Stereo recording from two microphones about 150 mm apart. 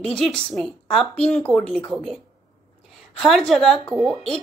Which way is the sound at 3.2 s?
Centre (ahead or behind).